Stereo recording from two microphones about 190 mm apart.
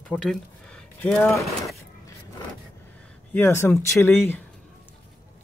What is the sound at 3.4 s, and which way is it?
Speech, 15° left (ahead or behind).